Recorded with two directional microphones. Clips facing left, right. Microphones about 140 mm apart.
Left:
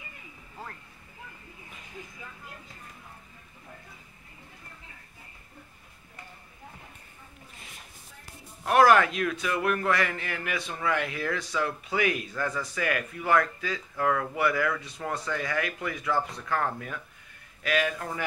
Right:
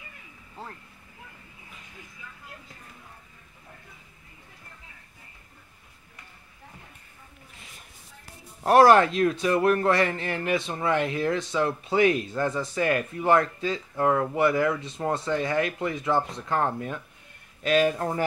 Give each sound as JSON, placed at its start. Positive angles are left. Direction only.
{"t": 8.6, "sound": "a man's voice", "side_deg": -35}